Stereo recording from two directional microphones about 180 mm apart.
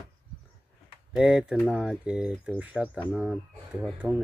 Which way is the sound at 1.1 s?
5° right (ahead or behind).